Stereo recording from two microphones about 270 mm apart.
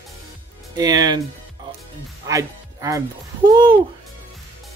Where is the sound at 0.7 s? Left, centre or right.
Centre.